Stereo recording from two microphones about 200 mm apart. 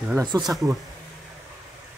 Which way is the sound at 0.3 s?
15° right (ahead or behind).